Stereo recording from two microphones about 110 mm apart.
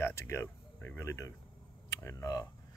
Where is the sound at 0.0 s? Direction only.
25° left (ahead or behind).